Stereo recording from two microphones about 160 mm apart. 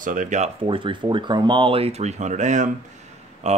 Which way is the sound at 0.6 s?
30° right (ahead or behind).